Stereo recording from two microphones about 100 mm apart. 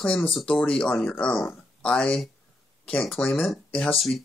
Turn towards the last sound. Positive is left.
turn(degrees=0)  # may be behind; listen again after turning